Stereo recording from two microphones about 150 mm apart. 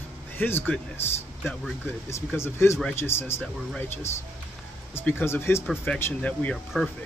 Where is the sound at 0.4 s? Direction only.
15° left (ahead or behind).